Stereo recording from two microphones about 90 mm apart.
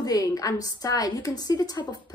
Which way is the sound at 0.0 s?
45° left (ahead or behind).